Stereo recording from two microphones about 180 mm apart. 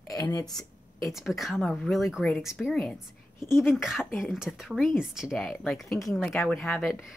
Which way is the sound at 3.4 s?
15° left (ahead or behind).